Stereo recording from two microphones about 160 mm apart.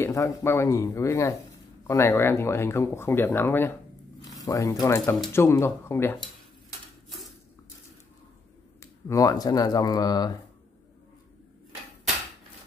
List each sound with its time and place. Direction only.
0.0 s speech: 15° left (ahead or behind)
9.0 s speech: 20° left (ahead or behind)